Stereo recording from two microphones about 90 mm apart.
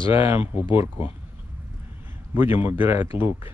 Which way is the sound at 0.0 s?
80° left.